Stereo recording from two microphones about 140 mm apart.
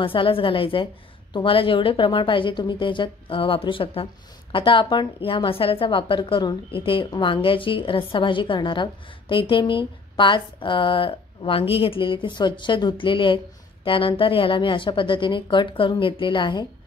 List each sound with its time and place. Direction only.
0.0 s a woman's voice: 40° left (ahead or behind)